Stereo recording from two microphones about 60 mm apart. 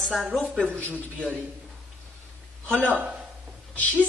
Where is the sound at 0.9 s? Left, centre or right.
Right.